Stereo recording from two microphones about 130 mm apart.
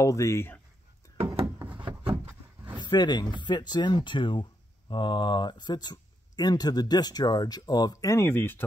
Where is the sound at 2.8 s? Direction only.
35° left (ahead or behind).